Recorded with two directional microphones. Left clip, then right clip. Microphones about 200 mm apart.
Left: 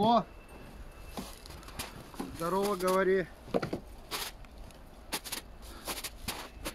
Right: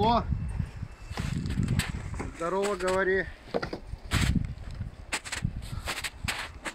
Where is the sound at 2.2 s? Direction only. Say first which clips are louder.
Right 2 dB; 55° left (ahead or behind).